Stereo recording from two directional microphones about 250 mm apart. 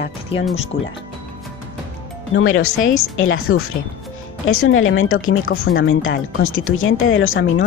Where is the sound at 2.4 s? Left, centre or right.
Left.